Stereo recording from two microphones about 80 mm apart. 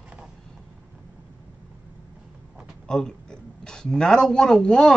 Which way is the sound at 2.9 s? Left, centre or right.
Centre.